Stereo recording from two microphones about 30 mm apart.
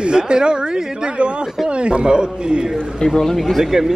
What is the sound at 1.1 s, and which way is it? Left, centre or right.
A man's voice, right.